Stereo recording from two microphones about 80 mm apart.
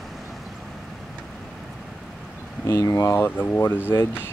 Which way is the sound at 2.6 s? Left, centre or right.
Left.